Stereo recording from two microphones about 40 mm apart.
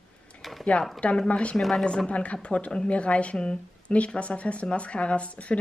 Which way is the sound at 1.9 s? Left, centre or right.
Left.